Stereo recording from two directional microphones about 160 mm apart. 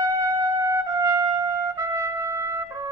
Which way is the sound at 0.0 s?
20° right (ahead or behind).